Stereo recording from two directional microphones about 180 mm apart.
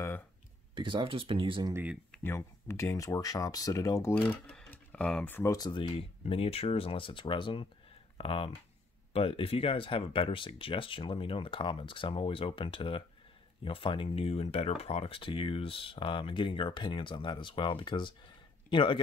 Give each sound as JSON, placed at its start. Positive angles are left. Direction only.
{"t": 0.7, "sound": "speech", "side_deg": -25}
{"t": 1.7, "sound": "speech", "side_deg": -10}
{"t": 2.1, "sound": "speech", "side_deg": 15}
{"t": 4.5, "sound": "a man's voice", "side_deg": 5}